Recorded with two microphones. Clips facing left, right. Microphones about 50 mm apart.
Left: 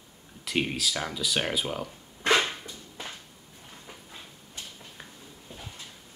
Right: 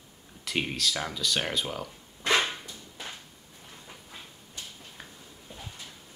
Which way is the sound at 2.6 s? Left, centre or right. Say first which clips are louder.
Left 1 dB; centre.